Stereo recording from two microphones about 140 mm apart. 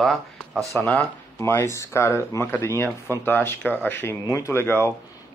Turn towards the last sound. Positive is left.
turn(degrees=20)  # may be behind; listen again after turning